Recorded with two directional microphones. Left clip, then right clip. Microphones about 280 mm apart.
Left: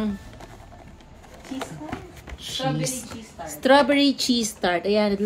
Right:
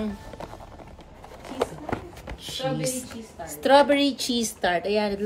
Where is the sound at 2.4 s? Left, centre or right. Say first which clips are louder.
Left 2 dB; left.